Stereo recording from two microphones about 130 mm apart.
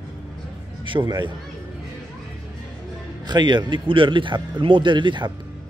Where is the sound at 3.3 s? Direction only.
35° right (ahead or behind).